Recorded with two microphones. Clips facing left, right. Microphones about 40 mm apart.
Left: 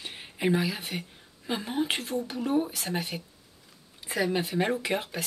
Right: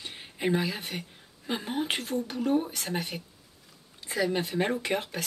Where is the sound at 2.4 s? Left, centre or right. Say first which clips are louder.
Even; centre.